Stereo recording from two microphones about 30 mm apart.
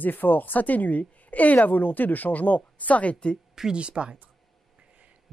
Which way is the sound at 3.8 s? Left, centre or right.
Right.